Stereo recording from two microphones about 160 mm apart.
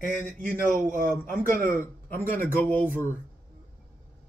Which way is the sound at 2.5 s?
10° left (ahead or behind).